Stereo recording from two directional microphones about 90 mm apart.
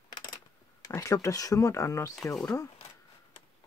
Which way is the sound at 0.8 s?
40° left (ahead or behind).